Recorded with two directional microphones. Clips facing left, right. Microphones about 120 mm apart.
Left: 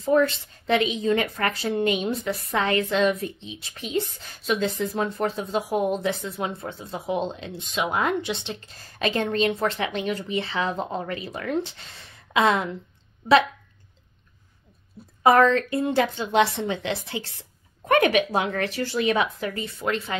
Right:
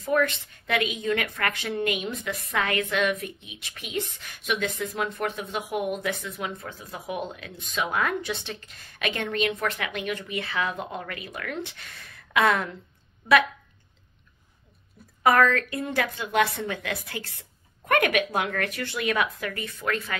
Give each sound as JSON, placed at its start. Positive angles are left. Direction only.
{"t": 0.0, "sound": "a woman's voice", "side_deg": 30}
{"t": 15.2, "sound": "a woman's voice", "side_deg": 25}